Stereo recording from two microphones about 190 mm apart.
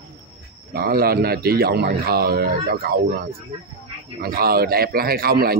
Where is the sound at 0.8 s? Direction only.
50° right (ahead or behind).